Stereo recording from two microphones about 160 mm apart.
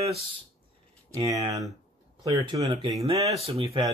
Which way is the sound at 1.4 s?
25° right (ahead or behind).